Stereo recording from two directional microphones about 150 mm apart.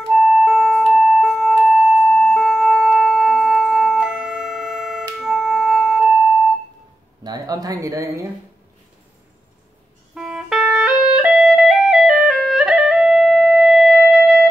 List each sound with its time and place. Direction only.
0.1 s music: 10° right (ahead or behind)
7.2 s a sound: 25° right (ahead or behind)
10.1 s music: 5° right (ahead or behind)